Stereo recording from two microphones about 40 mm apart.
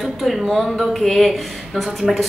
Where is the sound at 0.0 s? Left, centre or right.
Centre.